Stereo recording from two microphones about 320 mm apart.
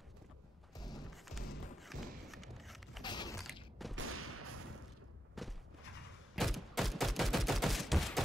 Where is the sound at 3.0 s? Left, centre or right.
Centre.